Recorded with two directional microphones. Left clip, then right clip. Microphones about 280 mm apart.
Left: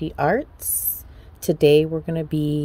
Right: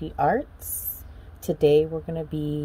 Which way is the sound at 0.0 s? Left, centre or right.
Left.